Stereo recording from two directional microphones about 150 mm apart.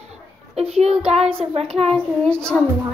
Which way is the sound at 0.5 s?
45° right (ahead or behind).